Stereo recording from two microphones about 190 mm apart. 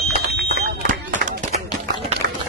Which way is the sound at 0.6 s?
45° right (ahead or behind).